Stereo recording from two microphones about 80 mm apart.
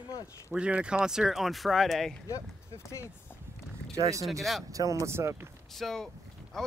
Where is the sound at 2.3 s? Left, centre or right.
Left.